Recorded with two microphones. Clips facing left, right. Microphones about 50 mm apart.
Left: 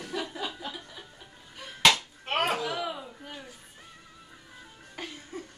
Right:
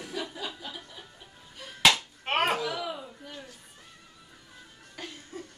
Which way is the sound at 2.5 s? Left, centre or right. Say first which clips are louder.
Even; centre.